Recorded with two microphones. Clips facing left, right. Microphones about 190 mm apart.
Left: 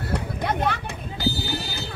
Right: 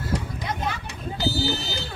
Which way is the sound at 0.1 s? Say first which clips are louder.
Left 4 dB; 60° left (ahead or behind).